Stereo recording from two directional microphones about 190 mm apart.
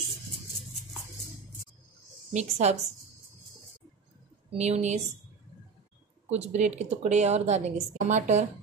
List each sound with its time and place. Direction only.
2.3 s speech: 35° right (ahead or behind)
4.5 s speech: 35° right (ahead or behind)
6.3 s speech: 35° right (ahead or behind)